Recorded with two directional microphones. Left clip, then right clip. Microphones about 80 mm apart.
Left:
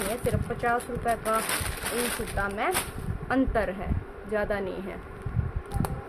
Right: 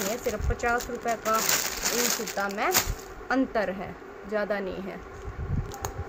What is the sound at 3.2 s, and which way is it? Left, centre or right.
A woman's voice, centre.